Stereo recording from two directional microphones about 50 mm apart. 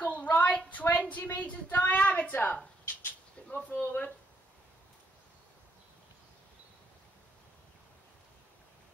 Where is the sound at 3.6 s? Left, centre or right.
Left.